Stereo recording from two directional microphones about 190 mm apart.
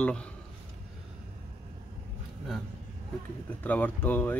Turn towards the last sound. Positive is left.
turn(degrees=10)  # may be behind; listen again after turning